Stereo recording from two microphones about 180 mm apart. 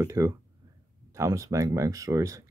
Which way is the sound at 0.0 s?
20° right (ahead or behind).